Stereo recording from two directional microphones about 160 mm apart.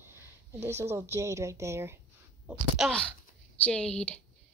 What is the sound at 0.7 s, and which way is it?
Speech, 15° right (ahead or behind).